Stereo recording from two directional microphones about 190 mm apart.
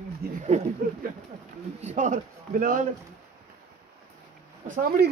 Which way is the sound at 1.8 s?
40° right (ahead or behind).